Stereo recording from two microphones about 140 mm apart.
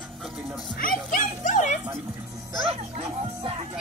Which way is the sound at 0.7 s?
85° left.